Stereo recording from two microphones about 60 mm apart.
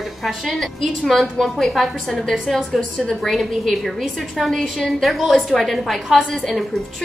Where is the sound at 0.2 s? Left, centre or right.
Centre.